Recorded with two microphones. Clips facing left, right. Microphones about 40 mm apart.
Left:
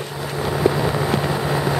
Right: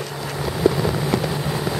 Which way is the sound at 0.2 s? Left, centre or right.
Centre.